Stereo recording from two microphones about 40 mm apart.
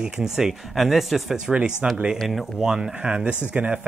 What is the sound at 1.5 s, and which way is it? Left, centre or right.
Speech, right.